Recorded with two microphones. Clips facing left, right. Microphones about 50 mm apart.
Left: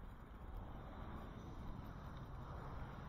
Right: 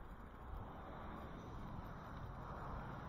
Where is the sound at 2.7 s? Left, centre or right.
Centre.